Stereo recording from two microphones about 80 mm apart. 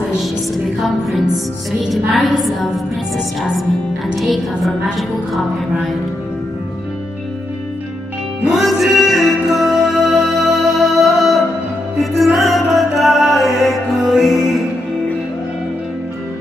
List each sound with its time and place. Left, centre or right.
0.7 s music: centre
4.2 s music: centre
8.5 s music: centre